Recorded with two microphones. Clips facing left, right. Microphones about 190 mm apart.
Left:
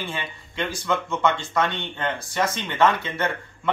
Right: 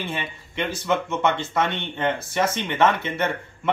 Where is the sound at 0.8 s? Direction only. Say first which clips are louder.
Right 1 dB; 20° right (ahead or behind).